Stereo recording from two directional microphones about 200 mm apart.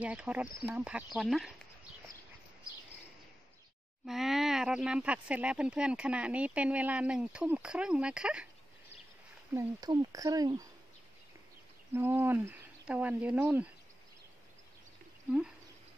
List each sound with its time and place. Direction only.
0.0 s speech: 5° right (ahead or behind)
4.0 s speech: centre (ahead or behind)
9.5 s speech: 15° right (ahead or behind)
11.9 s speech: 10° right (ahead or behind)